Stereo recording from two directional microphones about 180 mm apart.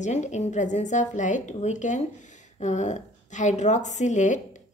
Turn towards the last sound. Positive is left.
turn(degrees=45)  # may be behind; listen again after turning